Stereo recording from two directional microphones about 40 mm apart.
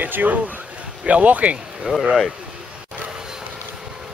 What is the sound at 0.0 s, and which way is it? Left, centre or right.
A man's voice, right.